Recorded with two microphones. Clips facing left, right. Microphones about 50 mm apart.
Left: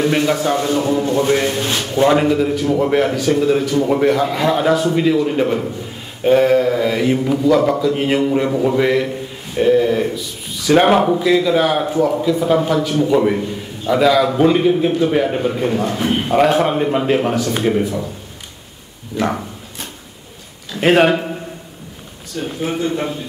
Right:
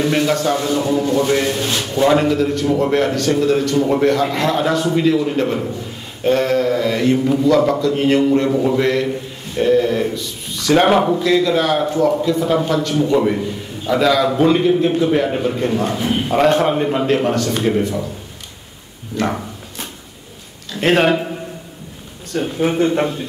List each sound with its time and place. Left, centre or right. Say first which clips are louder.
0.0 s a man's voice: even; centre
16.0 s a man's voice: left 1 dB; left
16.3 s a man's voice: even; centre
19.1 s a man's voice: left 1 dB; centre
20.7 s a man's voice: left 2 dB; centre
22.3 s speech: right 4 dB; right